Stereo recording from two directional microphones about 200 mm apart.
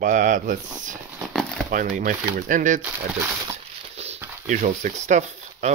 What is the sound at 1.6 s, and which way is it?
Speech, 40° right (ahead or behind).